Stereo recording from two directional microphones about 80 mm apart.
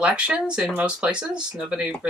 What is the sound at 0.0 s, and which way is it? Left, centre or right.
Speech, centre.